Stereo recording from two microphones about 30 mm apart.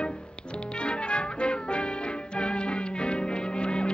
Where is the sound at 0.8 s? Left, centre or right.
Left.